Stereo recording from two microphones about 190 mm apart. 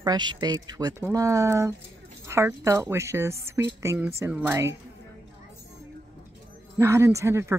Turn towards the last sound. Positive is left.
turn(degrees=-15)  # may be behind; listen again after turning